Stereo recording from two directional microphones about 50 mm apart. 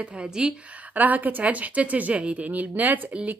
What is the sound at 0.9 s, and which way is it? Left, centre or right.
Speech, right.